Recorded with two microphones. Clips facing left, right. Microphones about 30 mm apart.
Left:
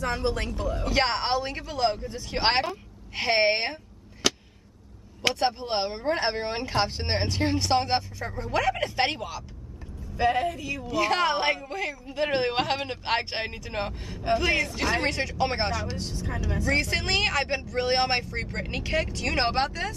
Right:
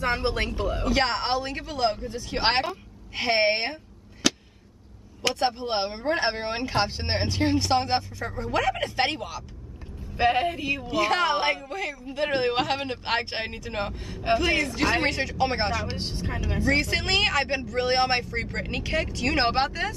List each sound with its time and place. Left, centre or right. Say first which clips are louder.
0.0 s speech: right 2 dB; right
0.8 s a woman's voice: even; centre
5.3 s speech: right 2 dB; centre
10.1 s speech: right 2 dB; right
11.0 s speech: even; centre
14.8 s a woman's voice: right 2 dB; right
15.0 s speech: right 1 dB; centre
15.9 s speech: right 2 dB; right
16.4 s speech: right 3 dB; right
16.7 s speech: right 1 dB; centre